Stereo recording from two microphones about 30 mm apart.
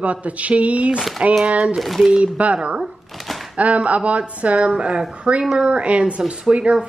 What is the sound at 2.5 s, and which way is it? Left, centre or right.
Speech, right.